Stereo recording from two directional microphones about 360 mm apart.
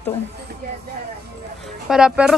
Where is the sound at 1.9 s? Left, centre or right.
Centre.